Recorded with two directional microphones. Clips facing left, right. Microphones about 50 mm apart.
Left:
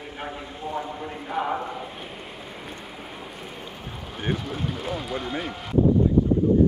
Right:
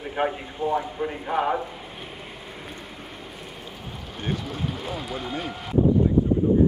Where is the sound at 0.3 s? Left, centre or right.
Centre.